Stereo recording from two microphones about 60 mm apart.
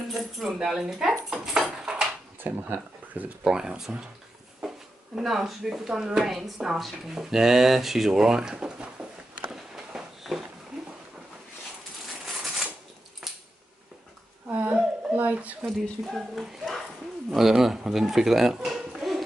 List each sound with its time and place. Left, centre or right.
0.1 s keys jangling: centre
0.6 s speech: centre
1.3 s dog: centre
2.4 s speech: right
3.4 s speech: centre
9.6 s a sound: centre
13.2 s a sound: centre
14.5 s a sound: right
15.6 s a child's voice: centre